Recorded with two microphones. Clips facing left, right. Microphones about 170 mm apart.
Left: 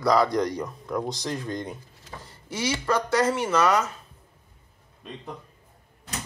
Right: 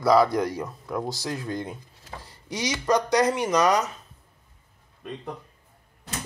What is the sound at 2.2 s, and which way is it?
Speech, 15° right (ahead or behind).